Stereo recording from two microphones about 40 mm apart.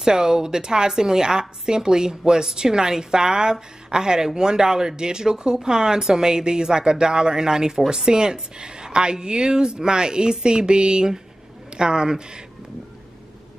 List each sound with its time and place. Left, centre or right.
0.0 s a woman's voice: centre